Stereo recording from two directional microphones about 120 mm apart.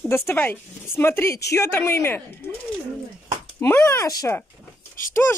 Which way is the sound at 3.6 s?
20° left (ahead or behind).